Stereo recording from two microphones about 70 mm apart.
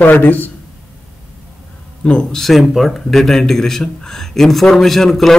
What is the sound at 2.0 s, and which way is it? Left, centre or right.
Speech, centre.